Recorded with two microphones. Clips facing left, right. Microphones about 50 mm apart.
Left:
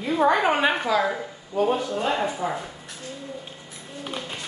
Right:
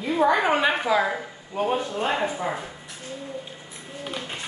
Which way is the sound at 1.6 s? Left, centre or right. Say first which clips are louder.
Left 2 dB; right.